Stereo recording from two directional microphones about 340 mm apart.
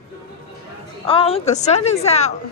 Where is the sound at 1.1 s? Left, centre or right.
Centre.